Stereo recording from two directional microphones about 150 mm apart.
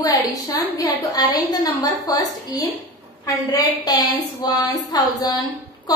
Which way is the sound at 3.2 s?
25° left (ahead or behind).